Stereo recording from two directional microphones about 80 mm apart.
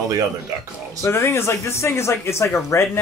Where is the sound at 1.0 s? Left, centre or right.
Left.